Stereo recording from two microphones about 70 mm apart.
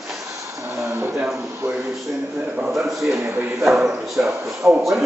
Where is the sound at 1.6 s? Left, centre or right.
Right.